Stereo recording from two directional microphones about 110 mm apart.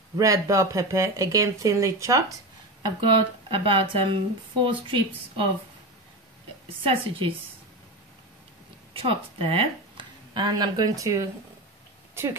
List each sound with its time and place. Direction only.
0.2 s speech: 30° right (ahead or behind)
3.2 s speech: 55° right (ahead or behind)
6.8 s speech: 55° right (ahead or behind)
8.9 s speech: 55° right (ahead or behind); by 12.3 s 25° right (ahead or behind)